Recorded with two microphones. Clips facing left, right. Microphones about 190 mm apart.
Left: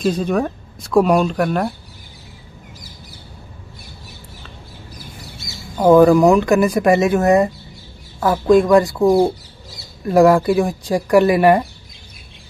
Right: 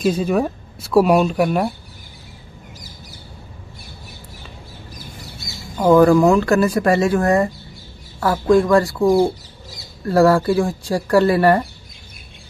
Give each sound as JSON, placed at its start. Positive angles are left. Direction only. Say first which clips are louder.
{"t": 0.0, "sound": "speech", "louder": "even", "side_deg": -5}
{"t": 5.9, "sound": "speech", "louder": "left 2 dB", "side_deg": 20}